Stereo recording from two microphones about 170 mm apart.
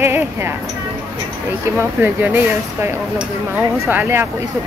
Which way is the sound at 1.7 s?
10° right (ahead or behind).